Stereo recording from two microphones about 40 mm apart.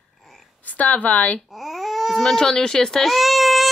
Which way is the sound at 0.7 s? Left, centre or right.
Left.